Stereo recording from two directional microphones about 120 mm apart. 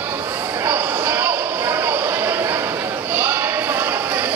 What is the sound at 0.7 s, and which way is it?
Basketball bounce, 20° right (ahead or behind).